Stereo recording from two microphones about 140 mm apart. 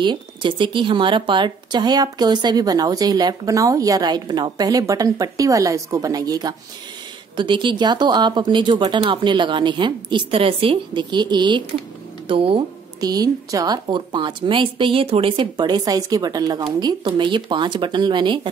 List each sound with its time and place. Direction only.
0.0 s a woman's voice: 35° right (ahead or behind)
13.0 s a woman's voice: 25° right (ahead or behind)